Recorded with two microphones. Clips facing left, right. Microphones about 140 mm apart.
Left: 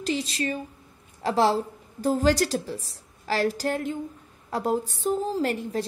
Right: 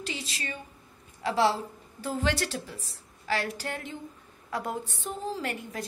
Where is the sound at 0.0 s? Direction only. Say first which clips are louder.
Left 10 dB; 35° left (ahead or behind).